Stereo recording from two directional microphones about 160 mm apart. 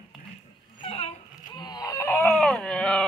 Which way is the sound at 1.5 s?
25° left (ahead or behind).